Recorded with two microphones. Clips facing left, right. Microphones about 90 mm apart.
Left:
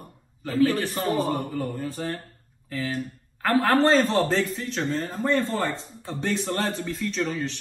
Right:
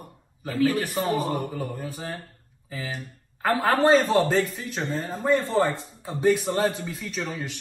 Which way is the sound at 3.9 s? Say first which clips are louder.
Right 1 dB; 5° right (ahead or behind).